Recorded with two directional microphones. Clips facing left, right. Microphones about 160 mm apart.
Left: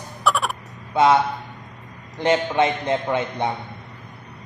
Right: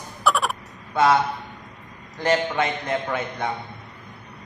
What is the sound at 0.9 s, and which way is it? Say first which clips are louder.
Speech: left 2 dB; 20° left (ahead or behind).